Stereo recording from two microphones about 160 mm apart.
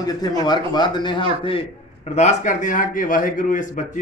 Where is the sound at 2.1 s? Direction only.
45° left (ahead or behind).